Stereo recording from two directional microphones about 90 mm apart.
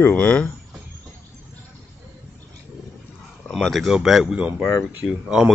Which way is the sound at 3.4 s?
5° left (ahead or behind).